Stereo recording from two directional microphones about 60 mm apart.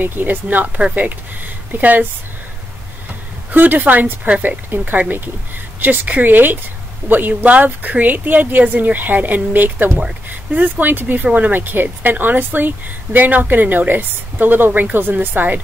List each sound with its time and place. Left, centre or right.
0.0 s speech: right
3.5 s a woman's voice: right